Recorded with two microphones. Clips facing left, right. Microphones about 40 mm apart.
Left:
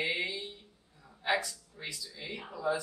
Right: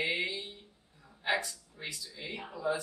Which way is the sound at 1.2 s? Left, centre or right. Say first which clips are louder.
Left 1 dB; centre.